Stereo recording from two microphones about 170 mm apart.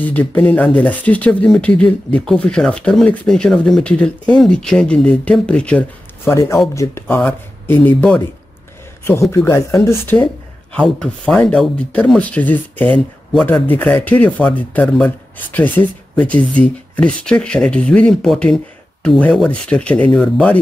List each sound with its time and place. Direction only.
0.0 s speech: 10° left (ahead or behind)
9.3 s speech: 15° left (ahead or behind)